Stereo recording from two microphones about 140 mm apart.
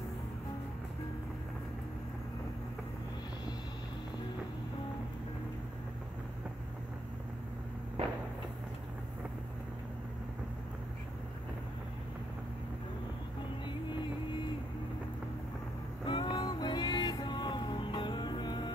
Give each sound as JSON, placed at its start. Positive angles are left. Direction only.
{"t": 16.1, "sound": "music", "side_deg": 35}